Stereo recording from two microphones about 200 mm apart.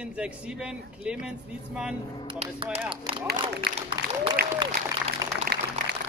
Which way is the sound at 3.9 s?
25° right (ahead or behind).